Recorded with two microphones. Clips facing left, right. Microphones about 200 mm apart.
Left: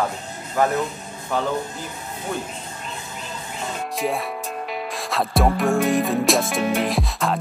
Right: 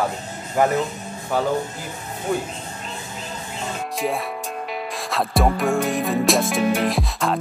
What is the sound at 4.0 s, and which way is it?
Music, centre (ahead or behind).